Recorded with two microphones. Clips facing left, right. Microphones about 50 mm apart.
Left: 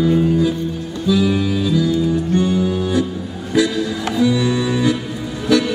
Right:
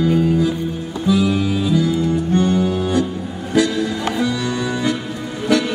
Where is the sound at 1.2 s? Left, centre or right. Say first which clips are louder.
Left 1 dB; centre.